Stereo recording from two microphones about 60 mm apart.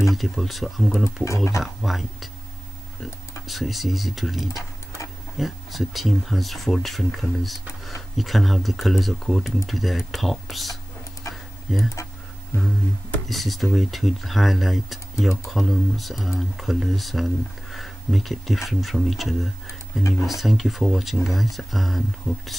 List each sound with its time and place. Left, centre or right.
0.1 s speech: centre
1.2 s speech: left
1.6 s speech: centre
11.3 s tick-tock: left
11.7 s speech: centre
13.3 s speech: centre
20.0 s speech: left
20.2 s speech: centre
22.3 s speech: centre